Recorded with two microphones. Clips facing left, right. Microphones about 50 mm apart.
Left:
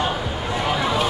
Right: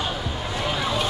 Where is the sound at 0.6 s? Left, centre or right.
Left.